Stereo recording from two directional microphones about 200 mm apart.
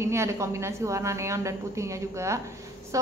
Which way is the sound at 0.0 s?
15° right (ahead or behind).